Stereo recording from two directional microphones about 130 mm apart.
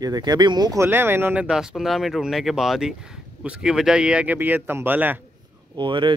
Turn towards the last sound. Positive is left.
turn(degrees=-40)  # may be behind; listen again after turning